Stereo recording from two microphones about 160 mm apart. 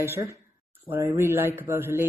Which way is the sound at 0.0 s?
15° right (ahead or behind).